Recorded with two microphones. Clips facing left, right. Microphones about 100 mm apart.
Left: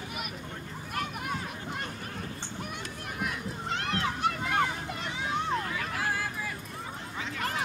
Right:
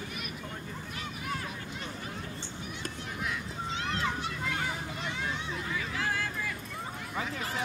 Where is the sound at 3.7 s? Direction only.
60° left (ahead or behind).